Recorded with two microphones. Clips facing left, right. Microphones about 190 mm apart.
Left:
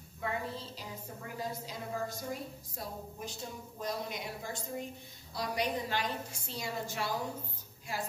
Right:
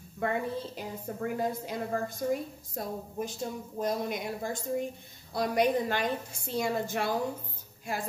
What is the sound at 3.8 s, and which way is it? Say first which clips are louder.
A woman's voice: right 7 dB; 50° right (ahead or behind).